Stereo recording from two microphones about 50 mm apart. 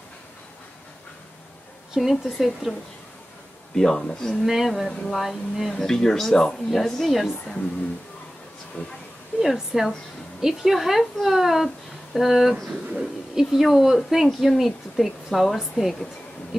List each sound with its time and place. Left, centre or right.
2.0 s a woman's voice: centre
3.7 s speech: centre
4.5 s a woman's voice: centre
5.7 s a woman's voice: centre
8.8 s speech: left
9.4 s a woman's voice: centre